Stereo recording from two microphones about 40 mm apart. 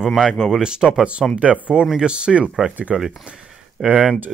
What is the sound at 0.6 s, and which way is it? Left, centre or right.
Speech, centre.